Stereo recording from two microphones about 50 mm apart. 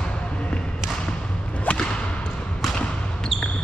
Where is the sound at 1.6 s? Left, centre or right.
Centre.